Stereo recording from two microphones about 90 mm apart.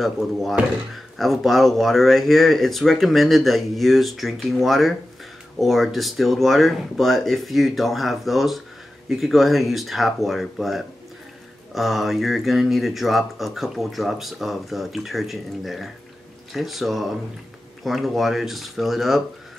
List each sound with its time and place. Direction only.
0.0 s speech: centre (ahead or behind)